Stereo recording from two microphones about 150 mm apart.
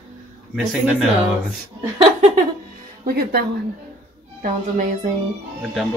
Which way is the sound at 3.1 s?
90° right.